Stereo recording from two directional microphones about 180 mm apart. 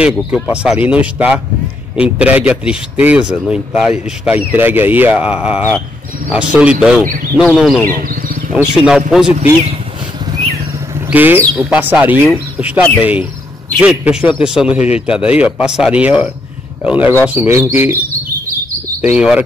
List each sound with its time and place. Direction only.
0.0 s a man's voice: 5° right (ahead or behind)
11.1 s a man's voice: 10° right (ahead or behind)
18.9 s speech: 5° right (ahead or behind)